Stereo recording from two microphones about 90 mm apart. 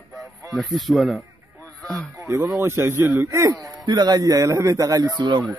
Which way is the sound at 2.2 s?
35° right (ahead or behind).